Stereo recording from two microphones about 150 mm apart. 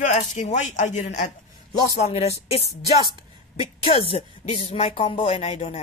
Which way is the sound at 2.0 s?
45° left (ahead or behind).